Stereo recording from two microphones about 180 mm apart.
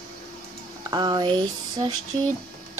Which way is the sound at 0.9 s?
25° right (ahead or behind).